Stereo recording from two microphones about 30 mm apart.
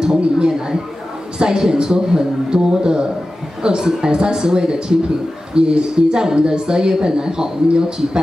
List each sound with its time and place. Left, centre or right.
0.0 s speech: right